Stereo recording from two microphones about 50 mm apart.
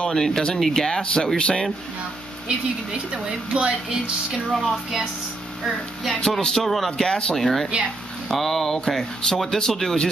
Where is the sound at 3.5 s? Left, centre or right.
Centre.